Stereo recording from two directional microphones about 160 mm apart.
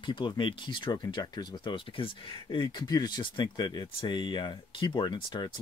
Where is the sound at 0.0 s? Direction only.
30° left (ahead or behind).